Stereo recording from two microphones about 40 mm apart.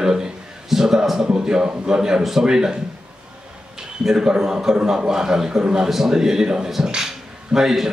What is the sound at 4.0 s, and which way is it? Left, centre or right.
A man's voice, centre.